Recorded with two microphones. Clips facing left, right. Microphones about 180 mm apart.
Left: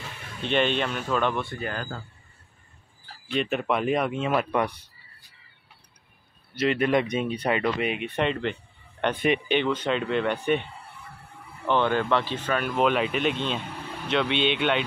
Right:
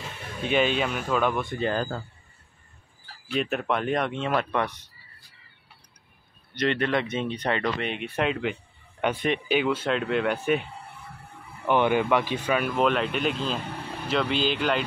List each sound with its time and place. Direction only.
0.4 s speech: 5° right (ahead or behind)
1.6 s speech: 30° right (ahead or behind)
3.3 s speech: centre (ahead or behind)
6.5 s speech: 5° left (ahead or behind)